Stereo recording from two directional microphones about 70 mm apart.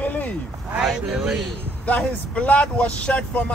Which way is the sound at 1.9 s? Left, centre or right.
Left.